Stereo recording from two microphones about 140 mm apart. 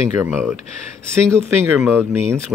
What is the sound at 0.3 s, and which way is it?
Speech, 5° right (ahead or behind).